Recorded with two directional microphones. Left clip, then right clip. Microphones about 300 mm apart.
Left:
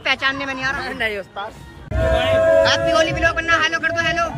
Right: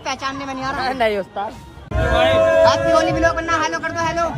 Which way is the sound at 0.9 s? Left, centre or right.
Right.